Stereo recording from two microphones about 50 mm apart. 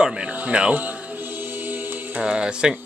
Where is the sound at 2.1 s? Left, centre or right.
Centre.